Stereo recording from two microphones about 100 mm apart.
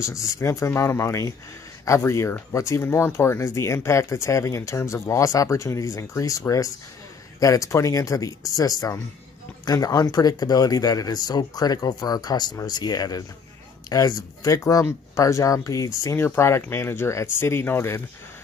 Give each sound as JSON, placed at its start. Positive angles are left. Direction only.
{"t": 0.0, "sound": "speech", "side_deg": 35}